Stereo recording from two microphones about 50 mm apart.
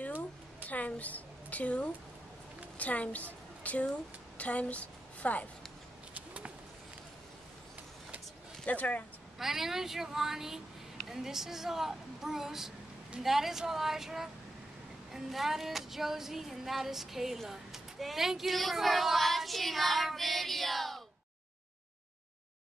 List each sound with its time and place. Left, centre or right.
0.7 s a woman's voice: left
6.1 s a sound: right
8.6 s speech: left
9.4 s a woman's voice: centre
15.1 s music: centre
17.5 s child singing: centre